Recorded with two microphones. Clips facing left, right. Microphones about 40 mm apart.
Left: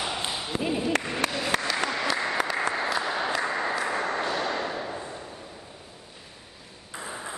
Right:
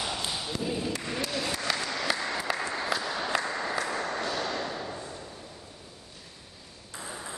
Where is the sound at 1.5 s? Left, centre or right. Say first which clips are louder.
Left 7 dB; left.